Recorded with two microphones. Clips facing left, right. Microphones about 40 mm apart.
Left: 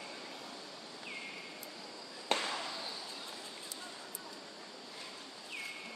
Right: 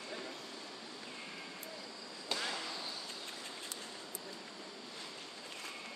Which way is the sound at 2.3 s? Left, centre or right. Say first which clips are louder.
Left 5 dB; left.